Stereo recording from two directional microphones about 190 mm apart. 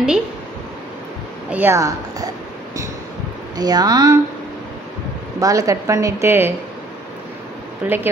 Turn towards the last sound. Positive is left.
turn(degrees=-10)  # may be behind; listen again after turning